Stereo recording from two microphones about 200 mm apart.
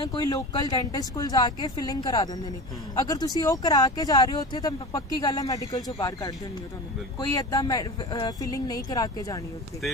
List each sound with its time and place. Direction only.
0.0 s speech: 20° left (ahead or behind)